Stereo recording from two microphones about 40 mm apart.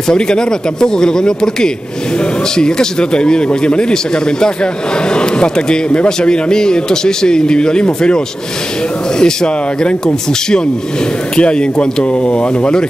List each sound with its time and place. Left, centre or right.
0.1 s speech: centre
9.2 s speech: centre